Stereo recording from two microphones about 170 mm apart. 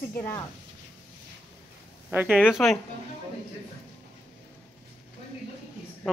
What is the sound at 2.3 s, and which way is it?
Speech, 5° left (ahead or behind).